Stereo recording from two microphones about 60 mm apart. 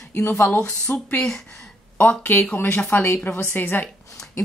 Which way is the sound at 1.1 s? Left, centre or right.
Centre.